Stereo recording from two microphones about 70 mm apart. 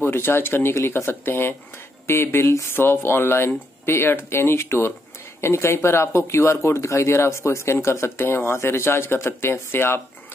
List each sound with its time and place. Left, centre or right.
0.0 s speech: left